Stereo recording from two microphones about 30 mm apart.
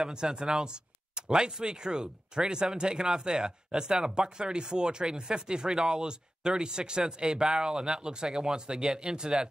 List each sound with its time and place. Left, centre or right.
0.1 s speech: right